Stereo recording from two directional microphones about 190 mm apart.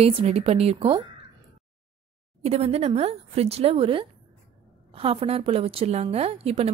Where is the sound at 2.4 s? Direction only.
35° right (ahead or behind).